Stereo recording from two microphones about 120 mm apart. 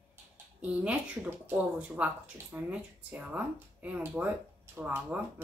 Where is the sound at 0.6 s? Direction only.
10° right (ahead or behind).